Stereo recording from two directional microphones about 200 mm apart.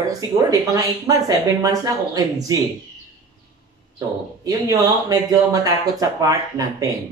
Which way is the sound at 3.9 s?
15° right (ahead or behind).